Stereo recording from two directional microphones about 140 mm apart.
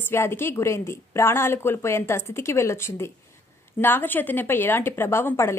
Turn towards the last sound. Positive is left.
turn(degrees=20)  # may be behind; listen again after turning